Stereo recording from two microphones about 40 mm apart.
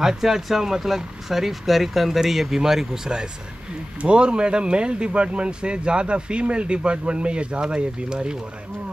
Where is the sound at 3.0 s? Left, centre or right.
Right.